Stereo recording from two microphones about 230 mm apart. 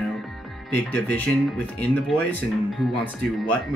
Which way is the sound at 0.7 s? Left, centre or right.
Centre.